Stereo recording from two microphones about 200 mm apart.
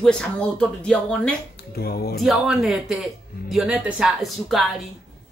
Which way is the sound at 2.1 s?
Centre (ahead or behind).